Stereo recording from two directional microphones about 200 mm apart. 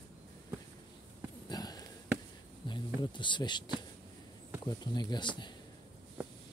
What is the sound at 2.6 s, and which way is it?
Bee, 20° left (ahead or behind).